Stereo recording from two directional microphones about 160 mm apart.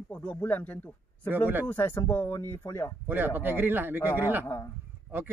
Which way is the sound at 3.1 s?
10° right (ahead or behind).